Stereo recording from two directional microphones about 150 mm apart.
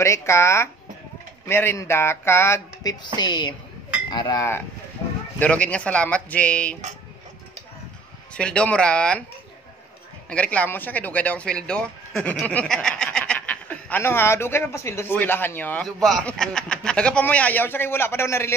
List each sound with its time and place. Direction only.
0.0 s speech: 20° left (ahead or behind)
8.4 s speech: 5° left (ahead or behind)
10.3 s speech: 10° left (ahead or behind)